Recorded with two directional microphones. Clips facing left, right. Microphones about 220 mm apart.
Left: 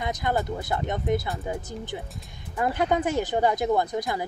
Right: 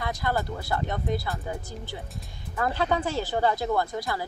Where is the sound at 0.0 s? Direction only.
20° left (ahead or behind).